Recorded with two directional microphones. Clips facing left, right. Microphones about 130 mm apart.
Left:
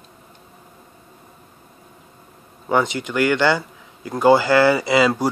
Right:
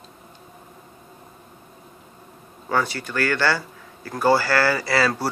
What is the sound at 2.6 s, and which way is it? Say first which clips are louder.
A man's voice: left 4 dB; 20° left (ahead or behind).